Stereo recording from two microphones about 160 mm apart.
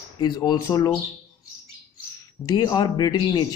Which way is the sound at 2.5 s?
25° left (ahead or behind).